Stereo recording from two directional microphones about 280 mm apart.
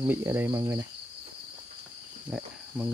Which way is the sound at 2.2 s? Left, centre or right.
Centre.